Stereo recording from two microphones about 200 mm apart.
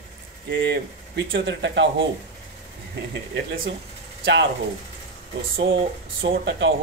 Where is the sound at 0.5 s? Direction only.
60° right (ahead or behind).